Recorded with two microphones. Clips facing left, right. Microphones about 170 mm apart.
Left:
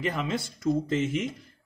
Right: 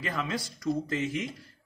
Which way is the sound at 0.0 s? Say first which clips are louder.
Left 3 dB; 20° left (ahead or behind).